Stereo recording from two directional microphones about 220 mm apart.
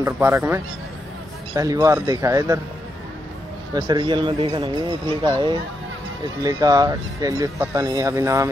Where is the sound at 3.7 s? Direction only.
20° right (ahead or behind).